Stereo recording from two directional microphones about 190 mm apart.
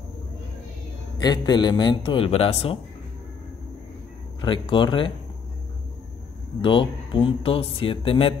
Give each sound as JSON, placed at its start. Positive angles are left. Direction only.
{"t": 1.1, "sound": "speech", "side_deg": 20}
{"t": 4.4, "sound": "speech", "side_deg": 25}
{"t": 6.6, "sound": "speech", "side_deg": 25}